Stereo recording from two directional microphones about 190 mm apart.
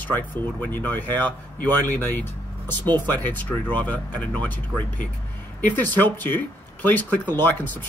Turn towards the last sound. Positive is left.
turn(degrees=10)  # may be behind; listen again after turning